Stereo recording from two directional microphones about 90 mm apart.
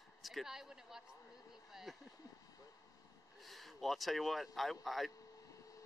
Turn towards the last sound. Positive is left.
turn(degrees=0)  # may be behind; listen again after turning